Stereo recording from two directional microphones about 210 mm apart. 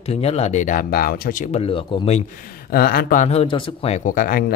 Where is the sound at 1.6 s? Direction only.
25° left (ahead or behind).